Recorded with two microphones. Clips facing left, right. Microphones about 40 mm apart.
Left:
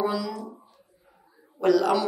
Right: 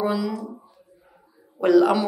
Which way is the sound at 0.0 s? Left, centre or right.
Centre.